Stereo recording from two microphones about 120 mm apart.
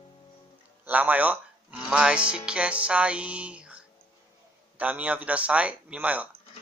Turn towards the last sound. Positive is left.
turn(degrees=-10)  # may be behind; listen again after turning